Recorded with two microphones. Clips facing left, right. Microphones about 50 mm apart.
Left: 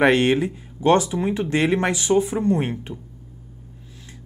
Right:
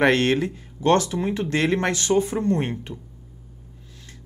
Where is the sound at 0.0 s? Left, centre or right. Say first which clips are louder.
Left 2 dB; centre.